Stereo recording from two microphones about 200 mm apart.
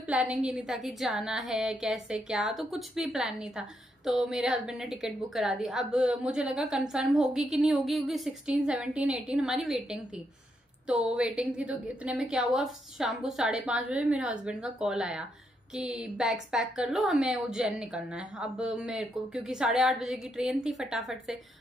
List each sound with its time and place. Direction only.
0.0 s a woman's voice: 5° right (ahead or behind)